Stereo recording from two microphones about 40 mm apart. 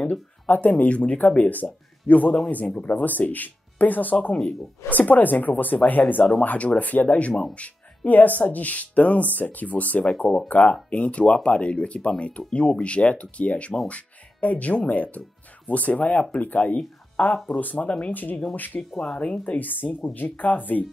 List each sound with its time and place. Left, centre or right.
0.5 s speech: left
17.8 s speech: left
18.1 s speech: left
18.7 s speech: left
19.6 s speech: left